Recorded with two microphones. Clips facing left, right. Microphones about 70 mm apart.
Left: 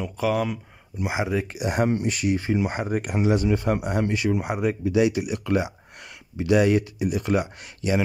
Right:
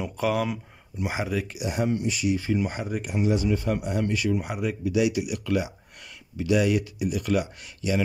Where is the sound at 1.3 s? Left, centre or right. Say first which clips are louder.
Left 3 dB; left.